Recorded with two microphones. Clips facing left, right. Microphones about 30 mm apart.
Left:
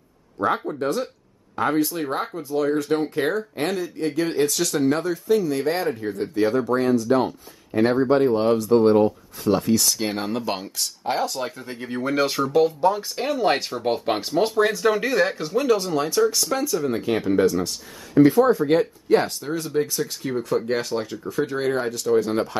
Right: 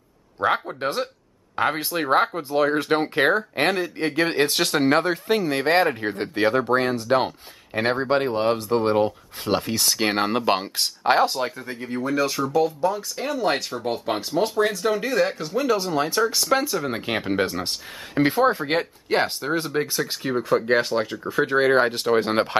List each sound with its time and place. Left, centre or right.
0.4 s speech: right
11.3 s speech: centre
11.6 s speech: centre
12.0 s speech: centre
14.5 s speech: centre
16.4 s speech: right